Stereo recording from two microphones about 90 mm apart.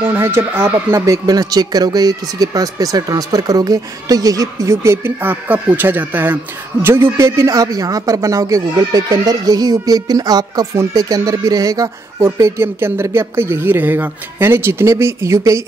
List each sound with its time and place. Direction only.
0.0 s speech: 25° right (ahead or behind)
1.0 s speech: 40° right (ahead or behind)